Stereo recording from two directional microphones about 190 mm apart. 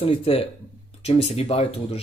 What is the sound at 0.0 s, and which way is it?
Speech, 30° left (ahead or behind).